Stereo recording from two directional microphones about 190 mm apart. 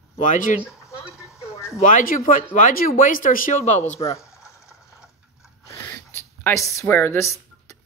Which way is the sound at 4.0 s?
15° left (ahead or behind).